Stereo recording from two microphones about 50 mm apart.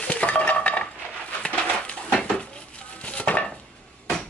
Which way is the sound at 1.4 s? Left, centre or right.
Left.